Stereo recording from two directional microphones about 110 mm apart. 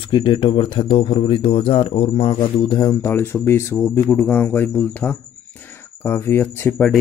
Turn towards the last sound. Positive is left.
turn(degrees=15)  # may be behind; listen again after turning